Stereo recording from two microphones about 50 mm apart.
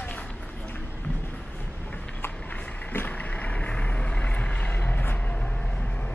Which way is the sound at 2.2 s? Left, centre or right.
Left.